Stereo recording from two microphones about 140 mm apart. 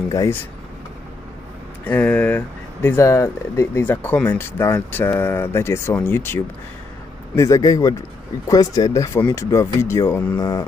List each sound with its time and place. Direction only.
1.9 s speech: 10° left (ahead or behind)